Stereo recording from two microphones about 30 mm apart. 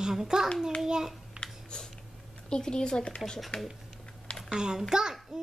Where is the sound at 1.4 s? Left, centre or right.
Right.